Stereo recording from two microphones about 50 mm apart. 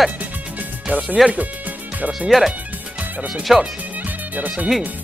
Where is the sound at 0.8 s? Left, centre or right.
Right.